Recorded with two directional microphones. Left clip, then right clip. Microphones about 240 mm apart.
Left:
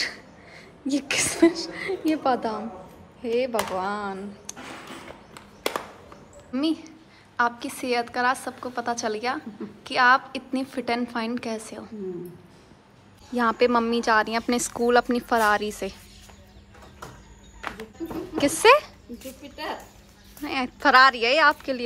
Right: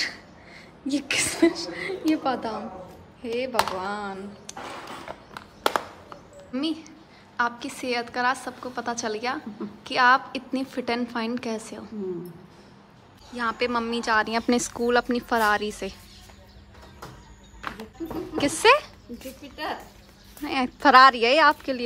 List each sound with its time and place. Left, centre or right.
0.0 s speech: centre
6.5 s speech: centre
13.3 s speech: centre
17.6 s a sound: left
18.4 s speech: centre